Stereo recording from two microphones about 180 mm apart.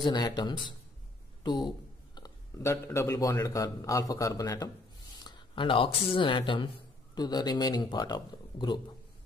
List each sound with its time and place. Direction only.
0.0 s speech: 25° left (ahead or behind)